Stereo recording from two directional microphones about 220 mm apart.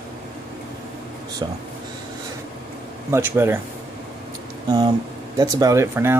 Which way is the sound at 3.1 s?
10° right (ahead or behind).